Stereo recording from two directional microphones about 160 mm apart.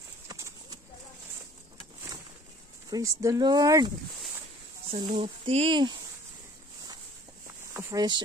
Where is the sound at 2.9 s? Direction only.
20° right (ahead or behind).